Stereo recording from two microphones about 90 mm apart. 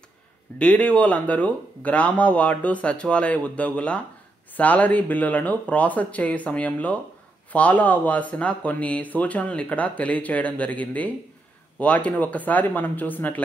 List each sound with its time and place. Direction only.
0.6 s speech: 15° left (ahead or behind)